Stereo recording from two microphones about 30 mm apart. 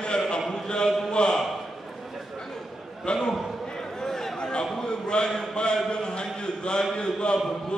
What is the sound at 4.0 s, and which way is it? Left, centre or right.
Chatter, centre.